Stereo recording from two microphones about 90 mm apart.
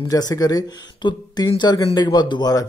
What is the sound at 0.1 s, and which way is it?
A man's voice, 40° left (ahead or behind).